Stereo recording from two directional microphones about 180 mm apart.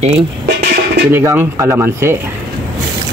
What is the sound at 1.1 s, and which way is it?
Speech, 10° right (ahead or behind).